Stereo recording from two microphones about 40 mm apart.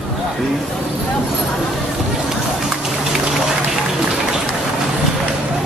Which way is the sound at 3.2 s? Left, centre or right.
Centre.